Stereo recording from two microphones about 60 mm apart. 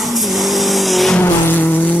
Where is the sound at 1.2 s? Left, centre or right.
Left.